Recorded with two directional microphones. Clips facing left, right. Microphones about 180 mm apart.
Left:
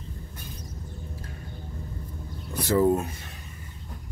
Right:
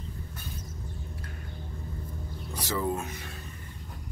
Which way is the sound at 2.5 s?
55° left (ahead or behind).